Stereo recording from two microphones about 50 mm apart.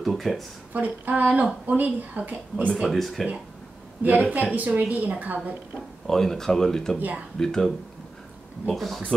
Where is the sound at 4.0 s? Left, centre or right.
Right.